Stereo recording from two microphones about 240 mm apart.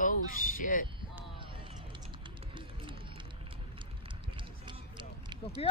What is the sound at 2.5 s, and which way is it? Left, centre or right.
Run, centre.